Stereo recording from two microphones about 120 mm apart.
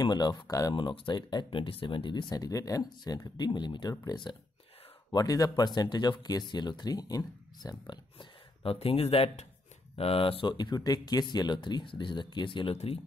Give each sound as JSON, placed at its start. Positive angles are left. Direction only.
{"t": 0.0, "sound": "speech", "side_deg": 35}
{"t": 0.7, "sound": "speech", "side_deg": 40}
{"t": 8.7, "sound": "speech", "side_deg": 55}
{"t": 12.7, "sound": "speech", "side_deg": 55}